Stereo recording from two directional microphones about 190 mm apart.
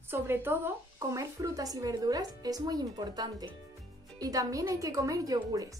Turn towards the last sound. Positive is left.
turn(degrees=-20)  # may be behind; listen again after turning